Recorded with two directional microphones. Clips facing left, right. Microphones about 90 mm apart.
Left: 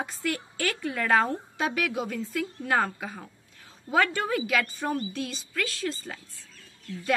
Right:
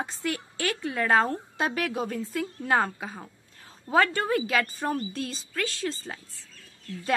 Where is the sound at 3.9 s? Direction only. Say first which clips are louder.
Right 2 dB; 35° right (ahead or behind).